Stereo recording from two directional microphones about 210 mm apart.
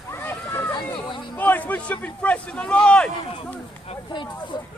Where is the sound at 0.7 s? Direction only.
20° left (ahead or behind).